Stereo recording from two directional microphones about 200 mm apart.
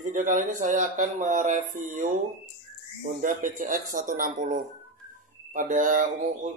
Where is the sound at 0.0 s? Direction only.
40° right (ahead or behind).